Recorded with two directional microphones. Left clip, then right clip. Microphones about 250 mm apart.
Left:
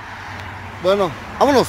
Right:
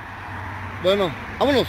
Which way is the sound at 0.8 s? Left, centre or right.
Centre.